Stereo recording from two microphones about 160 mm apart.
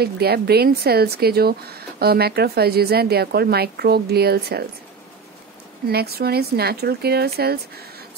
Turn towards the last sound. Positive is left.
turn(degrees=-80)